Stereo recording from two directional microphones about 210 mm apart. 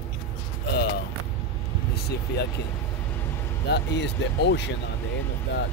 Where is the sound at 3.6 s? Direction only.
55° left (ahead or behind).